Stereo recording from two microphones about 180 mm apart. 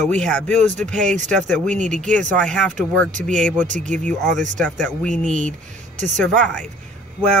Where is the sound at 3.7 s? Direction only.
45° right (ahead or behind).